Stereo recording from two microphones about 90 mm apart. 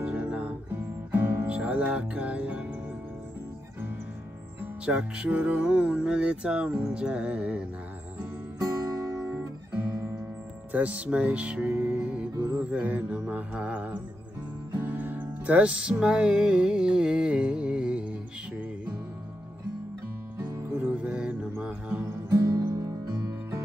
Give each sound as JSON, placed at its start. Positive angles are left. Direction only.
{"t": 0.0, "sound": "music", "side_deg": -15}
{"t": 4.8, "sound": "speech", "side_deg": -10}
{"t": 9.3, "sound": "guitar", "side_deg": -25}
{"t": 10.7, "sound": "music", "side_deg": -15}
{"t": 12.4, "sound": "music", "side_deg": -30}
{"t": 12.7, "sound": "speech", "side_deg": -15}
{"t": 14.7, "sound": "music", "side_deg": -20}
{"t": 20.8, "sound": "mantra", "side_deg": -15}
{"t": 22.5, "sound": "music", "side_deg": -40}